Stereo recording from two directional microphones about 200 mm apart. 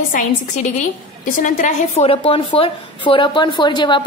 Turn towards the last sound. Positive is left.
turn(degrees=20)  # may be behind; listen again after turning